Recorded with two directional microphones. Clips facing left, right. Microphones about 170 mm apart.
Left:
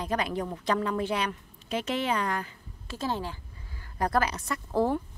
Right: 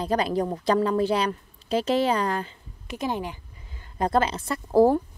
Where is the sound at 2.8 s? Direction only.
15° right (ahead or behind).